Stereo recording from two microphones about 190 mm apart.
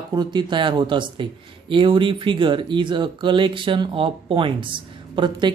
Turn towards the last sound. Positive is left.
turn(degrees=-25)  # may be behind; listen again after turning